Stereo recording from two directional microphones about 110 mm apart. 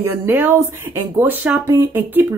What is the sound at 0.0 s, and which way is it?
Speech, 20° right (ahead or behind).